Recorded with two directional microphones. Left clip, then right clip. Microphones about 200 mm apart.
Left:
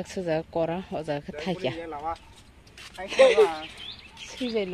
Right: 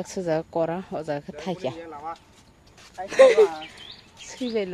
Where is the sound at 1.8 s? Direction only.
45° left (ahead or behind).